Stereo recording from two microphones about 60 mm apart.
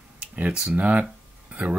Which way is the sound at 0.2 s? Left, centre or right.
Centre.